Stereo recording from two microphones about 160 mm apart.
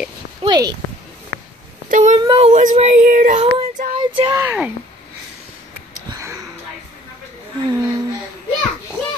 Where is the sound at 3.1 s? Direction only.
60° right (ahead or behind).